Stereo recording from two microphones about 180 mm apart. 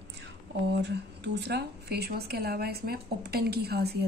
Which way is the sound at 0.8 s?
70° right (ahead or behind).